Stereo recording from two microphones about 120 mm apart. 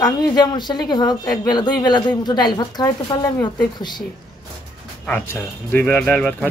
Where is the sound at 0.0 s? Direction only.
35° left (ahead or behind).